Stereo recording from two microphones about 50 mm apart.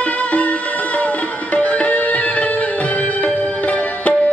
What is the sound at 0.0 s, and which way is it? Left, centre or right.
Music, left.